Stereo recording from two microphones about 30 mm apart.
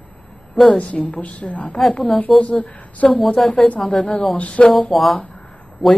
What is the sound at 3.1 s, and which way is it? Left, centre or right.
Speech, centre.